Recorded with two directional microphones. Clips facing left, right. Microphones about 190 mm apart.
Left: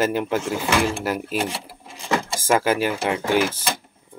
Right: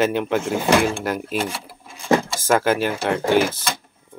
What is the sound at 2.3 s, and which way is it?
Speech, 10° left (ahead or behind).